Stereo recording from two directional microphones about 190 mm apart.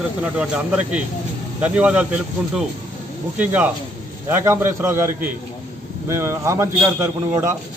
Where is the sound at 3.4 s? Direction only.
10° right (ahead or behind).